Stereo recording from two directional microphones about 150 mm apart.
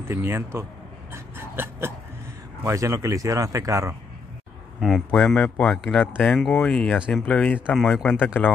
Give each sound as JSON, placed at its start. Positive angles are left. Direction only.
{"t": 0.0, "sound": "a man's voice", "side_deg": -15}
{"t": 1.1, "sound": "hiccup", "side_deg": -15}
{"t": 2.6, "sound": "speech", "side_deg": -20}
{"t": 4.7, "sound": "speech", "side_deg": 0}
{"t": 8.2, "sound": "speech", "side_deg": 10}